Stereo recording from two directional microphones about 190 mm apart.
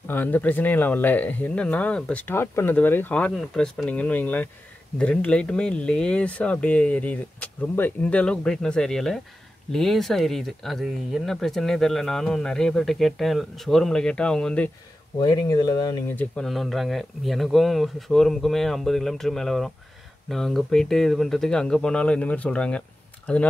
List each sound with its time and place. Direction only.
0.1 s speech: 10° left (ahead or behind)
15.1 s speech: 20° left (ahead or behind)
16.2 s speech: 5° left (ahead or behind)